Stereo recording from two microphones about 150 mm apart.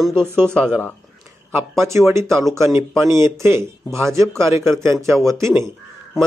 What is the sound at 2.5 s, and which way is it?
Speech, 15° right (ahead or behind).